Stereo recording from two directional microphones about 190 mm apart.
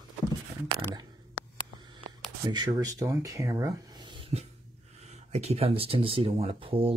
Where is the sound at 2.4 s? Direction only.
20° right (ahead or behind).